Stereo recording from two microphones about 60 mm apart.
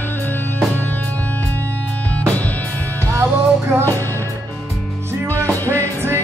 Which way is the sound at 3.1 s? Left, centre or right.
Right.